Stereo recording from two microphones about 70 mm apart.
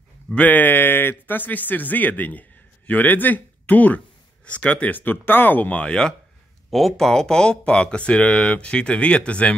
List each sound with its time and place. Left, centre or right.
0.3 s speech: left